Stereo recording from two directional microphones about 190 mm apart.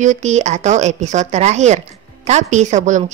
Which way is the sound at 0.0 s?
40° right (ahead or behind).